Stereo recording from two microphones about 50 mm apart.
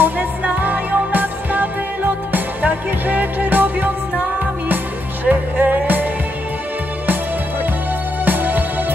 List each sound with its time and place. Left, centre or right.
0.0 s music: right
5.2 s music: right
8.3 s music: right